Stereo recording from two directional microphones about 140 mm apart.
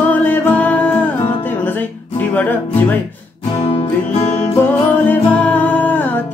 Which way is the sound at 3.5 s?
40° left (ahead or behind).